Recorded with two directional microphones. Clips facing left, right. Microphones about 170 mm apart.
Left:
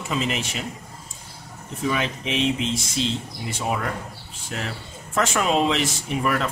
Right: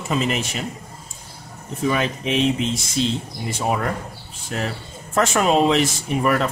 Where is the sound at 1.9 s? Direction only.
45° right (ahead or behind).